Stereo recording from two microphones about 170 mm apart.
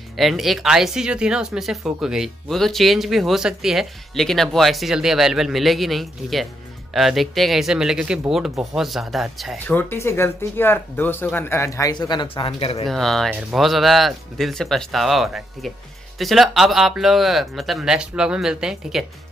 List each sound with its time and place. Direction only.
0.2 s speech: centre (ahead or behind)
9.7 s speech: 10° left (ahead or behind); by 12.8 s 35° left (ahead or behind)
12.8 s speech: centre (ahead or behind)